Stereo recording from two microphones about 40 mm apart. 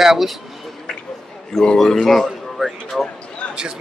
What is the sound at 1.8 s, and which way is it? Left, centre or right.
Speech, centre.